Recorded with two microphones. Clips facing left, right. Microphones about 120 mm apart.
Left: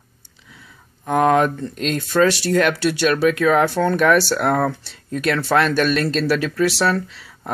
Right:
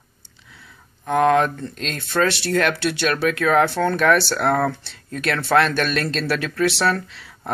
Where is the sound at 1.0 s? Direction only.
10° left (ahead or behind).